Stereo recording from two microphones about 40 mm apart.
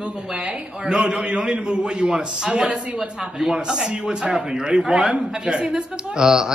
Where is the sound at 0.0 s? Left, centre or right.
Right.